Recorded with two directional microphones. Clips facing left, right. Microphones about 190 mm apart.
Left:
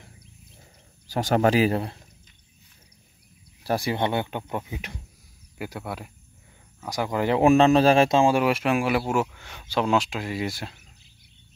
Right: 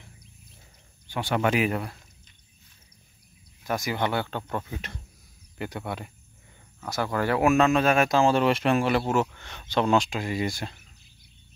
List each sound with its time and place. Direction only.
1.0 s speech: 40° left (ahead or behind)
3.6 s speech: 30° left (ahead or behind); by 6.1 s 5° left (ahead or behind)
6.8 s speech: 15° left (ahead or behind)
7.4 s speech: 30° left (ahead or behind)
8.2 s speech: 10° left (ahead or behind)